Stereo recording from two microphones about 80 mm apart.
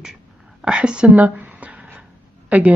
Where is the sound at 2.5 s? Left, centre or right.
Centre.